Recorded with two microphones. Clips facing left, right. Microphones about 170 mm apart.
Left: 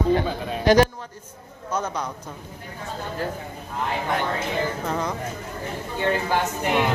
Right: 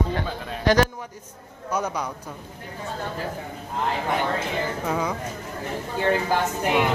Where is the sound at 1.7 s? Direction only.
15° right (ahead or behind).